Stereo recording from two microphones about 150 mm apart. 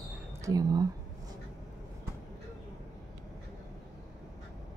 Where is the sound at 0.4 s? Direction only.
25° right (ahead or behind).